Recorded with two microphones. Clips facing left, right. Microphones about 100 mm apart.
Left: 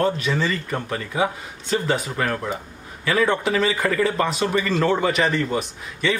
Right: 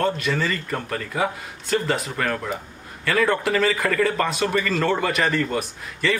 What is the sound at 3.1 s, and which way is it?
A man's voice, centre (ahead or behind).